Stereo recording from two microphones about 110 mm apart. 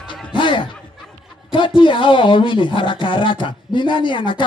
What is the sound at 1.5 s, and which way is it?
Speech, 50° left (ahead or behind).